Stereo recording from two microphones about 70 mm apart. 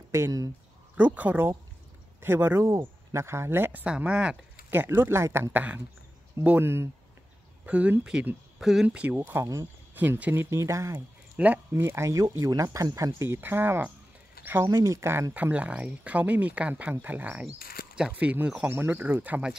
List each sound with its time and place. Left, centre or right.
0.9 s speech: right
3.8 s speech: centre
4.6 s speech: right
6.6 s speech: right
7.6 s speech: centre
8.5 s speech: centre
8.8 s speech: centre
9.1 s speech: right
9.9 s speech: right
10.3 s speech: right
11.3 s speech: right
11.7 s speech: right
15.3 s speech: right
18.7 s speech: right